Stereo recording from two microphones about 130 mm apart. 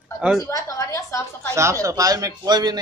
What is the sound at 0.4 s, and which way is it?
A woman's voice, 25° left (ahead or behind).